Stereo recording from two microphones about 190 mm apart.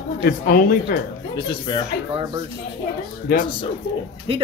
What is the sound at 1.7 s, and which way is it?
Speech, 25° left (ahead or behind).